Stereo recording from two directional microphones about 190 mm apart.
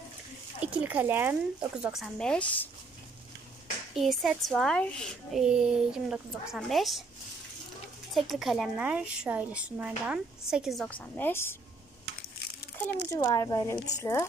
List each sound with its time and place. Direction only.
0.6 s speech: 5° right (ahead or behind)
3.9 s a woman's voice: centre (ahead or behind)
8.1 s a woman's voice: centre (ahead or behind)
13.1 s speech: 20° left (ahead or behind)